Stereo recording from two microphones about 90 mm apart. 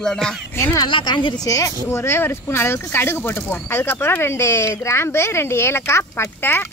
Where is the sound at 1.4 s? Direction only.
40° left (ahead or behind).